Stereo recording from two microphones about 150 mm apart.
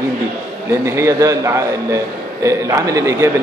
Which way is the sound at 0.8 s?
20° right (ahead or behind).